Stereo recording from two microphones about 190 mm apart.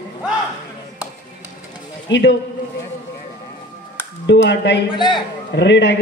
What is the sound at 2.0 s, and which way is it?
Speech, 70° left (ahead or behind).